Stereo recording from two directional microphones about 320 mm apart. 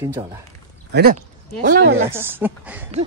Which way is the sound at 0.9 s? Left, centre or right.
Right.